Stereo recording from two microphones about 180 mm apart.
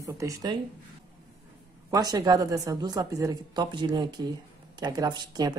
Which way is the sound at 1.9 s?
20° right (ahead or behind).